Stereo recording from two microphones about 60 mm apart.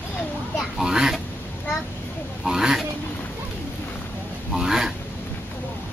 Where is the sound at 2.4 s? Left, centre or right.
Centre.